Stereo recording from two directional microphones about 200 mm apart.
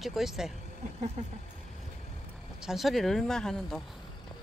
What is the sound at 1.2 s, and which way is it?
Speech, 35° right (ahead or behind).